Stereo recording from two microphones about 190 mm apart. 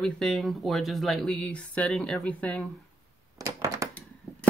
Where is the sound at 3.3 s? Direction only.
20° right (ahead or behind).